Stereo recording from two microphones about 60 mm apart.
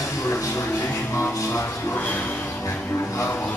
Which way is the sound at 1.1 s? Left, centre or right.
Left.